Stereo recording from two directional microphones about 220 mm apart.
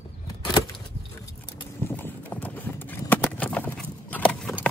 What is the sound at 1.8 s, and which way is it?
Clip-clop, 10° left (ahead or behind).